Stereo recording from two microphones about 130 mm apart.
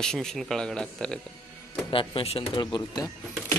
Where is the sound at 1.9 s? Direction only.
45° left (ahead or behind).